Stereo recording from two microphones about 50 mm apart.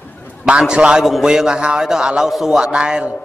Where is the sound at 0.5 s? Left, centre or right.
Centre.